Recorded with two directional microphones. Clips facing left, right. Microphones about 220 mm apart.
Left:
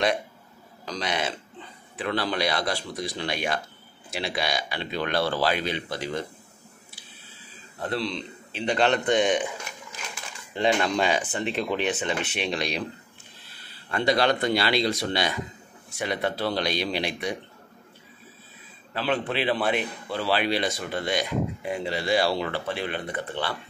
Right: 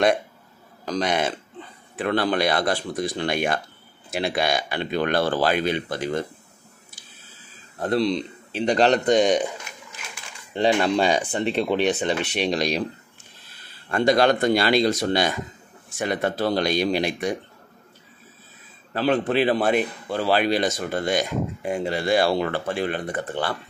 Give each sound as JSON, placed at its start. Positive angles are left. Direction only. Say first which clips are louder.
{"t": 0.8, "sound": "a man's voice", "louder": "right 6 dB", "side_deg": -50}
{"t": 7.8, "sound": "speech", "louder": "right 7 dB", "side_deg": -40}
{"t": 10.5, "sound": "speech", "louder": "right 4 dB", "side_deg": -30}
{"t": 13.8, "sound": "a man's voice", "louder": "right 4 dB", "side_deg": -45}
{"t": 18.9, "sound": "a man's voice", "louder": "right 6 dB", "side_deg": -45}